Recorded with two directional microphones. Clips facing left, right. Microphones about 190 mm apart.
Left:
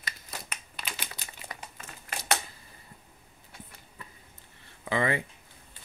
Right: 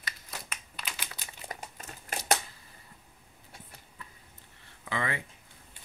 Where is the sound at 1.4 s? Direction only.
40° right (ahead or behind).